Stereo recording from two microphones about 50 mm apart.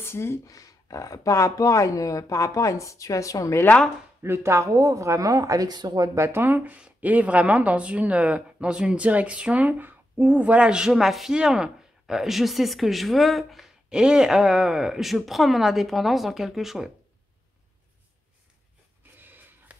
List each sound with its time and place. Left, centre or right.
0.0 s speech: left
0.9 s speech: left
4.2 s speech: right
6.3 s speech: right
10.7 s a man's voice: centre
13.8 s speech: centre
19.1 s a sound: right